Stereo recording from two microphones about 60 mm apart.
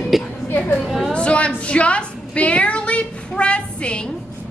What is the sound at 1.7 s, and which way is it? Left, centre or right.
Child singing, centre.